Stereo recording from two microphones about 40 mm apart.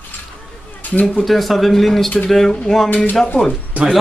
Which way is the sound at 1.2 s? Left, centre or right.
Centre.